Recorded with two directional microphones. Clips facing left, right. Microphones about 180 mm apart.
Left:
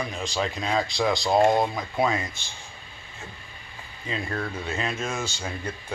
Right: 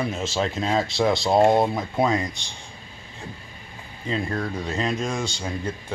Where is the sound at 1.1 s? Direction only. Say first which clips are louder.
Right 2 dB; centre (ahead or behind).